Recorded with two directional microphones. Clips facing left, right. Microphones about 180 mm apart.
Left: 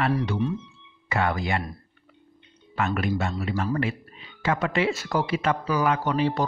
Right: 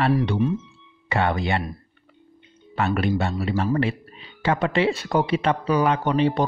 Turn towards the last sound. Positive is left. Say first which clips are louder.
# right 3 dB
turn(degrees=-20)  # may be behind; listen again after turning